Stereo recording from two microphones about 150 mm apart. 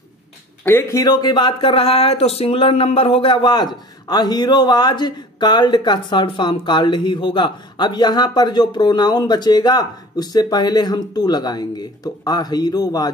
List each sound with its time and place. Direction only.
0.7 s speech: 15° left (ahead or behind)